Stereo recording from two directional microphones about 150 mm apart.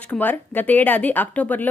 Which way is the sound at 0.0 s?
10° left (ahead or behind).